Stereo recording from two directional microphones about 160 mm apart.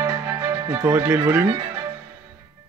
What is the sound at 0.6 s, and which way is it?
Speech, 20° right (ahead or behind).